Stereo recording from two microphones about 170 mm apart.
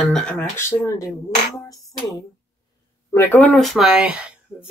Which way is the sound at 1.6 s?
20° left (ahead or behind).